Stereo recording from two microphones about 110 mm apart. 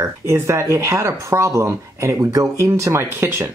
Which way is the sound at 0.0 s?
25° right (ahead or behind).